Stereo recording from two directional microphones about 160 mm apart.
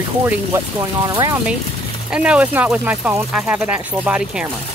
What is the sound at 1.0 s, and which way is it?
Speech, 25° right (ahead or behind).